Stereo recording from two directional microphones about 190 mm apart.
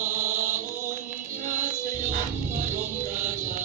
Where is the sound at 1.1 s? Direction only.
45° right (ahead or behind).